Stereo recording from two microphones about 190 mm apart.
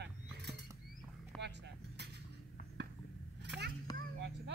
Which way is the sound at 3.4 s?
65° right (ahead or behind).